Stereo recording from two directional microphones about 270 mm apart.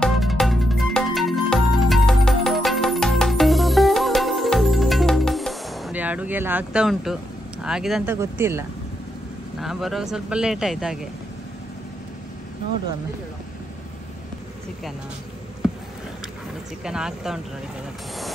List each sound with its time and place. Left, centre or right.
0.0 s music: centre
7.6 s speech: centre
16.8 s speech: centre